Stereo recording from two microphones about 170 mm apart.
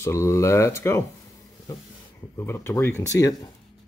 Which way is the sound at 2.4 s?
15° left (ahead or behind).